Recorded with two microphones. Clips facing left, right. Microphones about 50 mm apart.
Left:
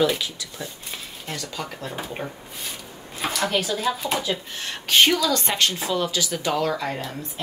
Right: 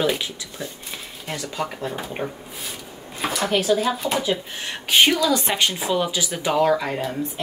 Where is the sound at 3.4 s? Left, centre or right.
Centre.